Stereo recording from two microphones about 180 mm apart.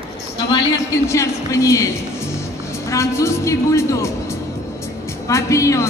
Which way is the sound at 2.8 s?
15° left (ahead or behind).